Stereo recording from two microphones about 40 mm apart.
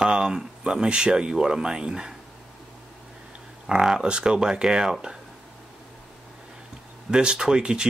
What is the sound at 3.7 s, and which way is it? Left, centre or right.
Speech, right.